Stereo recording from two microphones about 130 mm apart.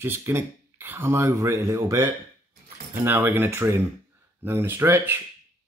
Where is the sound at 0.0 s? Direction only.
20° right (ahead or behind).